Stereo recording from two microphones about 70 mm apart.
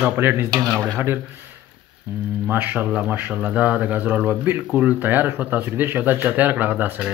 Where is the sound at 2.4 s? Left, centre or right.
Right.